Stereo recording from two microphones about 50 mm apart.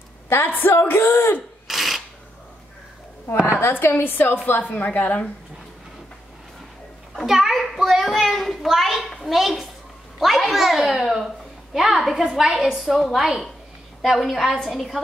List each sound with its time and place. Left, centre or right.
0.3 s a woman's voice: left
1.7 s a sound: centre
3.3 s a woman's voice: left
3.6 s a woman's voice: left
4.6 s a woman's voice: left
7.2 s a child's voice: centre